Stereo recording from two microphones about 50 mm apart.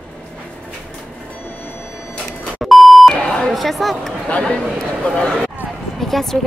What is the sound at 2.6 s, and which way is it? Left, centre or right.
Beep, centre.